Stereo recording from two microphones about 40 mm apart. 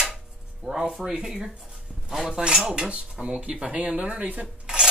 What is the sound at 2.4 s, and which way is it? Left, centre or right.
Speech, centre.